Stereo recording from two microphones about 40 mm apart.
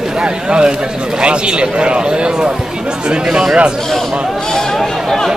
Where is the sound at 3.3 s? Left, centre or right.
Centre.